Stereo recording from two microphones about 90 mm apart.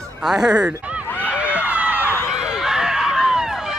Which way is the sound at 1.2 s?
15° right (ahead or behind).